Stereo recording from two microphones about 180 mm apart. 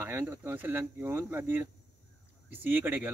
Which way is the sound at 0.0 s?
15° right (ahead or behind).